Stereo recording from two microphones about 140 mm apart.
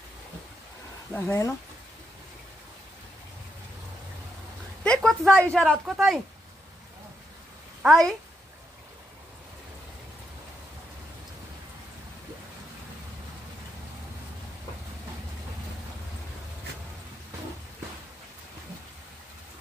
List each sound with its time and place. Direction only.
1.1 s speech: 20° left (ahead or behind)
4.8 s a sound: 5° left (ahead or behind)
5.5 s a woman's voice: 5° left (ahead or behind)
7.8 s a woman's voice: centre (ahead or behind)